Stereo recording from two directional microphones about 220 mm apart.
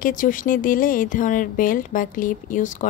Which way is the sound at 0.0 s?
35° left (ahead or behind).